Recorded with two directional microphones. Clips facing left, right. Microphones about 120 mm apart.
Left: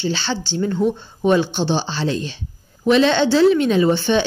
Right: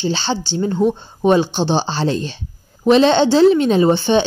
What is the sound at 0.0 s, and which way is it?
Speech, 25° right (ahead or behind).